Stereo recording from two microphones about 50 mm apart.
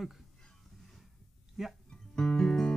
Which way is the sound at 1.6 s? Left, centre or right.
Centre.